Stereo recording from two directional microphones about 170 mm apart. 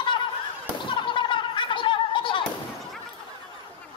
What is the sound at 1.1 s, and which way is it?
Gargling, 30° left (ahead or behind).